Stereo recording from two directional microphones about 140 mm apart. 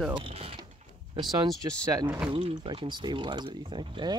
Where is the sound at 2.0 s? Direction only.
15° right (ahead or behind).